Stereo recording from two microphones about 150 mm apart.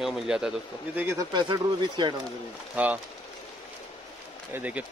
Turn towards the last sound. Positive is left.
turn(degrees=-10)  # may be behind; listen again after turning